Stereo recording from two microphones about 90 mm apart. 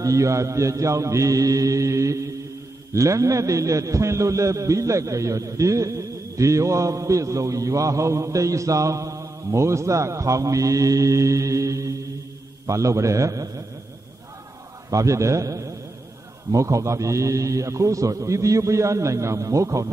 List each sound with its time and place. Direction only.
0.0 s a man's voice: 35° right (ahead or behind)
14.9 s a man's voice: 35° right (ahead or behind)